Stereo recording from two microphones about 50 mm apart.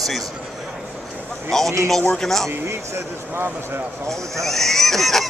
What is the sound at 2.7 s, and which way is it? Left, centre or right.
Speech, right.